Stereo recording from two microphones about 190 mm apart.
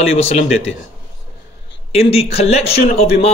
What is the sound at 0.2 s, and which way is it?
Speech, 35° left (ahead or behind).